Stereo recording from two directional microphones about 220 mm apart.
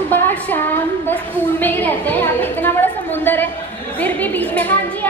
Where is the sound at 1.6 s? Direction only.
10° left (ahead or behind).